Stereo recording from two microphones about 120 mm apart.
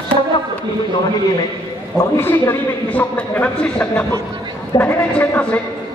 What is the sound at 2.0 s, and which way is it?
A man's voice, 20° left (ahead or behind).